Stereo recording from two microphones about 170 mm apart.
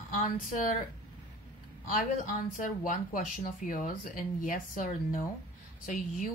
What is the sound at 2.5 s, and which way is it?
Speech, 50° left (ahead or behind).